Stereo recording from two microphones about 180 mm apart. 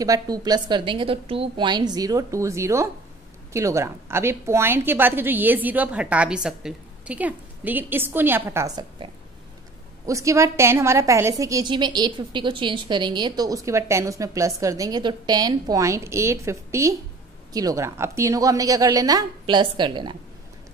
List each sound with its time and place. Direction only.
0.0 s a woman's voice: 20° right (ahead or behind)